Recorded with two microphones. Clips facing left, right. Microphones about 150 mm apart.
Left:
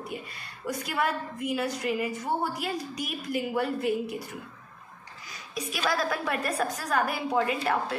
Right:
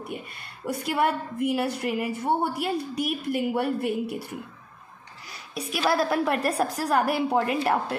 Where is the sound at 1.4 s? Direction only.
60° right (ahead or behind).